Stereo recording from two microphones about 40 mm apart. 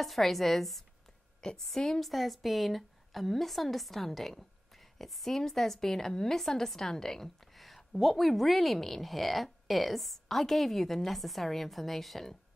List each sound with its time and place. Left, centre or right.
0.0 s a woman's voice: centre
1.4 s a woman's voice: centre
7.5 s a woman's voice: centre